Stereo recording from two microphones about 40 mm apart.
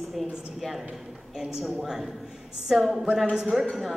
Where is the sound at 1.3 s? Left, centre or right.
Centre.